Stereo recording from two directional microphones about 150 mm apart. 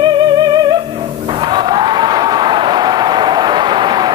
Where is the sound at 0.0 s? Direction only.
30° right (ahead or behind).